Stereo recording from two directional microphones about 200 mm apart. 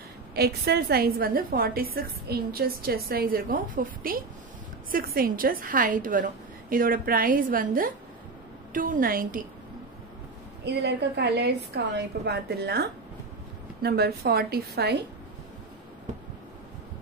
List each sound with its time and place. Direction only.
0.3 s a woman's voice: 50° right (ahead or behind)
10.6 s a woman's voice: 55° right (ahead or behind)
13.8 s a woman's voice: 50° right (ahead or behind)